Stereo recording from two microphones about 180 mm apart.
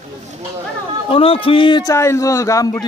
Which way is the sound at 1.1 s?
30° left (ahead or behind).